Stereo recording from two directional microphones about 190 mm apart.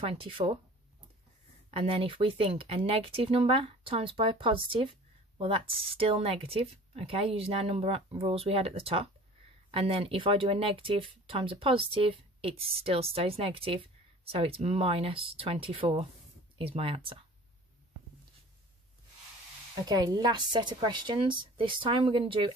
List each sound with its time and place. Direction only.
0.0 s speech: 30° right (ahead or behind)
1.7 s speech: 30° right (ahead or behind)
19.8 s speech: 20° right (ahead or behind)